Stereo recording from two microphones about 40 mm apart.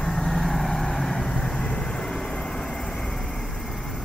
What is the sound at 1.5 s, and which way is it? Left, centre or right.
Vehicle, left.